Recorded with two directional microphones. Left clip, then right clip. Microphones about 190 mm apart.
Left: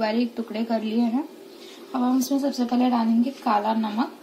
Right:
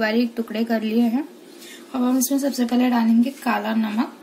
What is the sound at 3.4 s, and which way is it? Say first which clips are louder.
Speech: left 1 dB; 40° right (ahead or behind).